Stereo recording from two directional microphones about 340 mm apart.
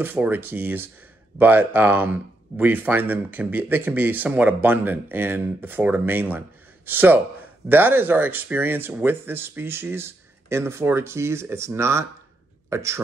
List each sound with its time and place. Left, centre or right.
0.0 s speech: centre